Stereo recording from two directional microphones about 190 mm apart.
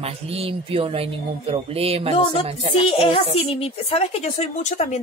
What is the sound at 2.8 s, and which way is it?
A man's voice, 30° left (ahead or behind).